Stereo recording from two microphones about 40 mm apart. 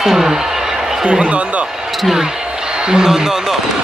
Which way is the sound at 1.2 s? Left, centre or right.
Right.